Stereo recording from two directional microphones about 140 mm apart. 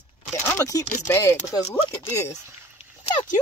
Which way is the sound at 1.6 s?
45° left (ahead or behind).